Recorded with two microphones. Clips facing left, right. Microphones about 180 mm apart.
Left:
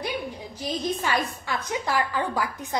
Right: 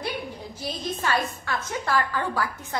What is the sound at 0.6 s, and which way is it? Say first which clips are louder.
A woman's voice: left 3 dB; 15° left (ahead or behind).